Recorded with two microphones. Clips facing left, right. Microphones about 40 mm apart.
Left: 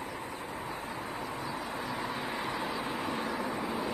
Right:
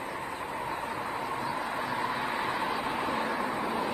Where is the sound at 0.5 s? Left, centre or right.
Right.